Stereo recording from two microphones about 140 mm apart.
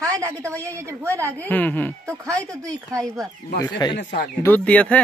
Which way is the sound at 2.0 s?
20° right (ahead or behind).